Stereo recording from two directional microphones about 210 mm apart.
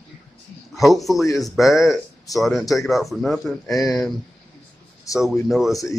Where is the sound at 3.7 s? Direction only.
15° left (ahead or behind).